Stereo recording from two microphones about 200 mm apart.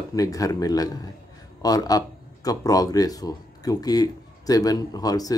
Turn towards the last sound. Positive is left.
turn(degrees=20)  # may be behind; listen again after turning